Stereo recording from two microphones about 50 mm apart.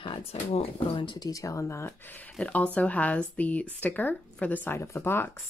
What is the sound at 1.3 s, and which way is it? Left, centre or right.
Speech, left.